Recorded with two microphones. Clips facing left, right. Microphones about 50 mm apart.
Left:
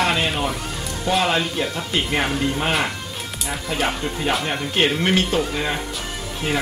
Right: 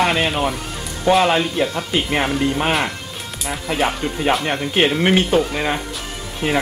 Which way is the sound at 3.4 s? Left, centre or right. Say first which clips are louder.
Right 3 dB; centre.